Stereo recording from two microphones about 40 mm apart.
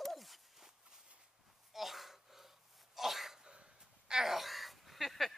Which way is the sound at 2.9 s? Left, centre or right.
Centre.